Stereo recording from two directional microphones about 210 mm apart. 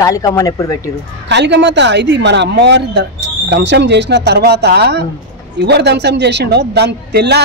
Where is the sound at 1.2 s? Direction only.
55° right (ahead or behind).